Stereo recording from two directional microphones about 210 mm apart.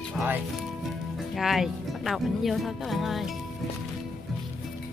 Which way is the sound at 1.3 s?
Centre (ahead or behind).